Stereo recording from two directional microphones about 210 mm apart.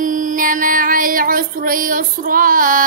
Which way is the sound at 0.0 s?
40° right (ahead or behind).